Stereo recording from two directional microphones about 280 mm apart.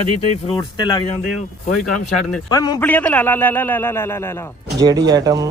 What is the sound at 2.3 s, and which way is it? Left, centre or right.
A man's voice, centre.